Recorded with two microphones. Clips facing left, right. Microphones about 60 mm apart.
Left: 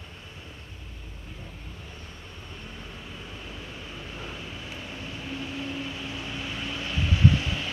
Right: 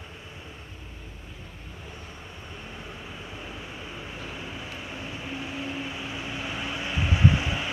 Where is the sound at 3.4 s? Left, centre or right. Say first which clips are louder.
Right 2 dB; centre.